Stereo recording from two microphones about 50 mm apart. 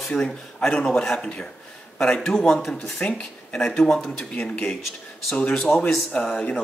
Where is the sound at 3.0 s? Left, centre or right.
Centre.